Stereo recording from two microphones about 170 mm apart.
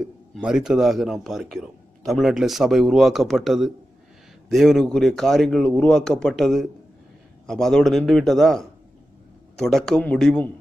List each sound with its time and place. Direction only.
0.0 s speech: 5° right (ahead or behind)